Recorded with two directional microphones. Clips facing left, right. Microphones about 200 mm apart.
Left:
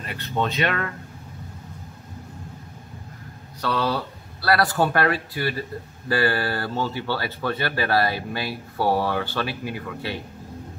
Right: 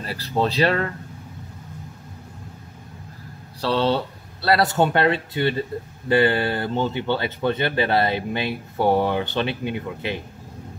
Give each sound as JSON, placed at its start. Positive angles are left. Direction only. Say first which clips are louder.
{"t": 0.0, "sound": "speech", "louder": "right 3 dB", "side_deg": -35}
{"t": 3.6, "sound": "speech", "louder": "right 4 dB", "side_deg": -30}